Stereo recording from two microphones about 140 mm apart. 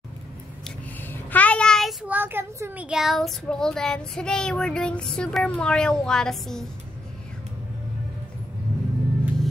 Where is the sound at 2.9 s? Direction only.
Centre (ahead or behind).